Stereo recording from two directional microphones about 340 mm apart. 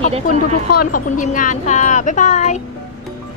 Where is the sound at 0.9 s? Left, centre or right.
Left.